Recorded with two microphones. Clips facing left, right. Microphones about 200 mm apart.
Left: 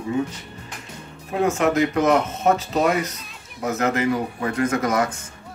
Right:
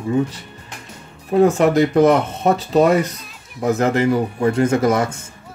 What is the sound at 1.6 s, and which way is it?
Speech, 35° right (ahead or behind).